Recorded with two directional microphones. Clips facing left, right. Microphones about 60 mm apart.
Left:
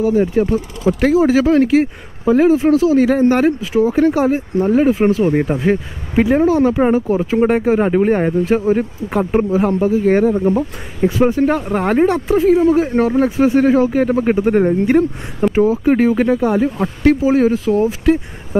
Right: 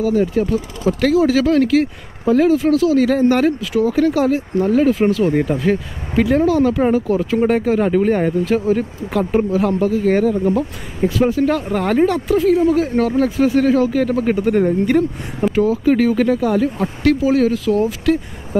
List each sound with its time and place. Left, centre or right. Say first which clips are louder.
0.0 s speech: left 2 dB; left
9.2 s speech: left 1 dB; centre
9.5 s speech: left 2 dB; left